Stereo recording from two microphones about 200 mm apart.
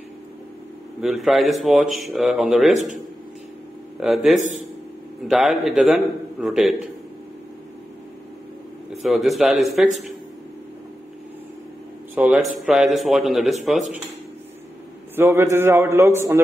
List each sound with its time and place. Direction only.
1.0 s a man's voice: centre (ahead or behind)
4.0 s a man's voice: centre (ahead or behind)
4.4 s a man's voice: 35° right (ahead or behind)
5.3 s a man's voice: centre (ahead or behind)
9.0 s a man's voice: centre (ahead or behind)
12.2 s a man's voice: 5° right (ahead or behind)
15.1 s a man's voice: 15° right (ahead or behind)